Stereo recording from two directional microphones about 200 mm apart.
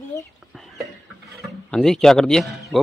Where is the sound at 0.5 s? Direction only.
Centre (ahead or behind).